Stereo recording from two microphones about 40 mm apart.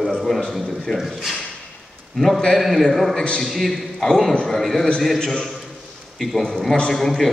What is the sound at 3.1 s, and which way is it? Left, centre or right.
Speech, left.